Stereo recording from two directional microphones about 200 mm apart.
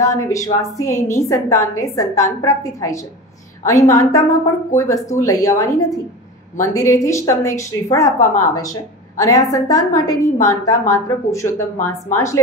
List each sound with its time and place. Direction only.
0.0 s a woman's voice: 15° left (ahead or behind)